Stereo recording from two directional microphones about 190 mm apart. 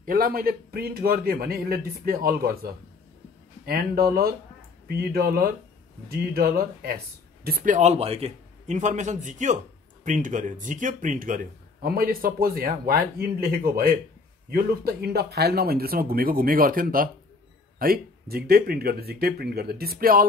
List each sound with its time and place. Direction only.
0.0 s a man's voice: 50° right (ahead or behind)